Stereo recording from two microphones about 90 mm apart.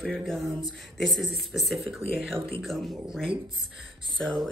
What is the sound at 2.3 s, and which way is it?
Speech, 85° right.